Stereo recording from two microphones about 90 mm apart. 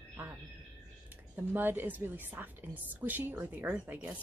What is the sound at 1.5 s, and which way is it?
A woman's voice, 20° right (ahead or behind).